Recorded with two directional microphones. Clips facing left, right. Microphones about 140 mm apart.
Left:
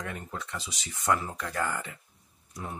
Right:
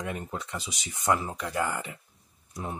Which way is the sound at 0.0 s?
20° right (ahead or behind).